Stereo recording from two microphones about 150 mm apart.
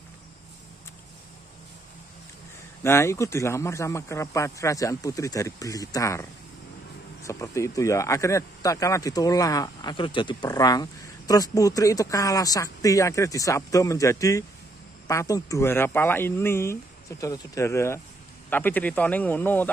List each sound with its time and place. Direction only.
2.8 s speech: 15° left (ahead or behind)
7.2 s speech: 20° left (ahead or behind)